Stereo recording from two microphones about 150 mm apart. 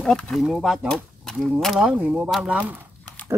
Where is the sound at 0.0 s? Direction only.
5° left (ahead or behind).